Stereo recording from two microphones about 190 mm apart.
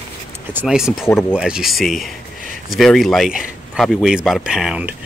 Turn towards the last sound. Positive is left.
turn(degrees=-5)  # may be behind; listen again after turning